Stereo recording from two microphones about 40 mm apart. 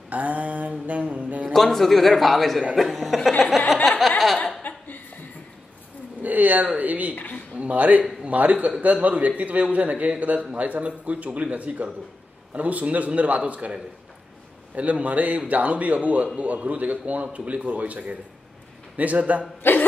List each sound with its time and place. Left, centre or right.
0.1 s mantra: right
1.1 s a sound: right
1.5 s a man's voice: centre
4.6 s chuckle: left
6.2 s a sound: right
6.8 s a man's voice: right
14.8 s a man's voice: right
19.6 s cough: left